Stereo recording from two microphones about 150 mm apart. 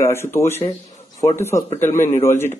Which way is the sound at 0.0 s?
15° left (ahead or behind).